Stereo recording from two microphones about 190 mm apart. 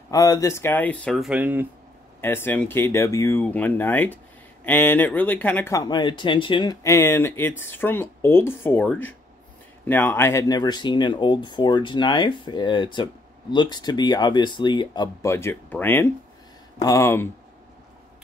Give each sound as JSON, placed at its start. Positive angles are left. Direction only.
{"t": 0.1, "sound": "speech", "side_deg": 20}
{"t": 2.2, "sound": "speech", "side_deg": 10}